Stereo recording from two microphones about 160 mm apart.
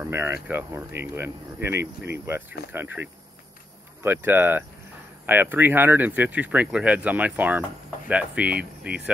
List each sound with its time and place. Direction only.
0.0 s speech: 15° right (ahead or behind)